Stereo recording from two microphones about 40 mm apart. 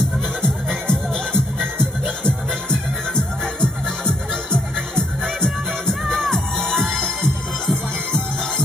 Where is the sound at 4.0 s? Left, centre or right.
Left.